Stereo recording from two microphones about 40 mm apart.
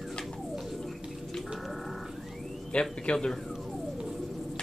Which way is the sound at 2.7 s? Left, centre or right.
Left.